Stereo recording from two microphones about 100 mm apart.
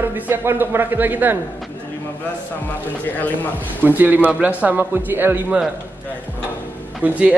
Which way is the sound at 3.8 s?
15° right (ahead or behind).